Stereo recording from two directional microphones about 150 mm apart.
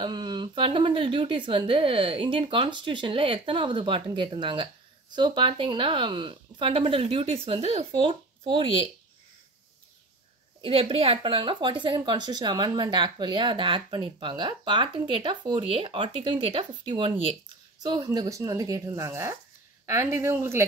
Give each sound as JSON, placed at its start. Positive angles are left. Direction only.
{"t": 0.0, "sound": "speech", "side_deg": -30}
{"t": 10.6, "sound": "speech", "side_deg": -40}